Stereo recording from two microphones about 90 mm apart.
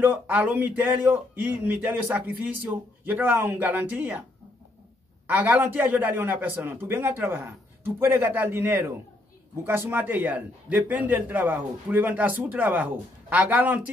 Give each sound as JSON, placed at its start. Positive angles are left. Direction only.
{"t": 0.0, "sound": "a man's voice", "side_deg": -20}
{"t": 5.2, "sound": "a man's voice", "side_deg": -20}